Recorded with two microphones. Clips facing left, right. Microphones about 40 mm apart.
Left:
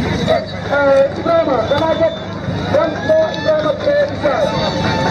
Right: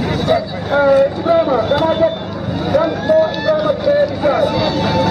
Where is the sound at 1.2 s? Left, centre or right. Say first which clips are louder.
Even; centre.